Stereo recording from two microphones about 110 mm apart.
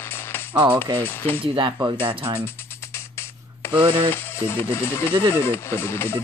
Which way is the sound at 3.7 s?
55° right (ahead or behind).